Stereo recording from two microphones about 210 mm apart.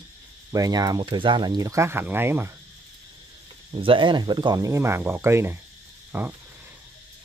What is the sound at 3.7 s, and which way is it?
Speech, 25° right (ahead or behind).